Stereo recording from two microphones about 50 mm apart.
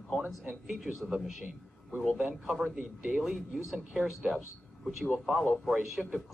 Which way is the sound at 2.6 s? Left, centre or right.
Right.